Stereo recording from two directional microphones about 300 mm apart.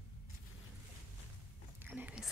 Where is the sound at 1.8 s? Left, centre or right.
Centre.